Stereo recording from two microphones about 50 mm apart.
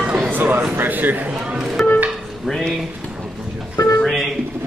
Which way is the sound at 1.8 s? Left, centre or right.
Left.